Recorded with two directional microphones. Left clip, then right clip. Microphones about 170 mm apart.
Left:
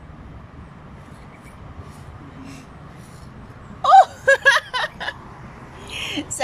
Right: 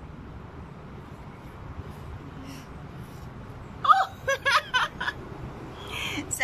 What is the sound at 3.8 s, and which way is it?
Snicker, 45° left (ahead or behind).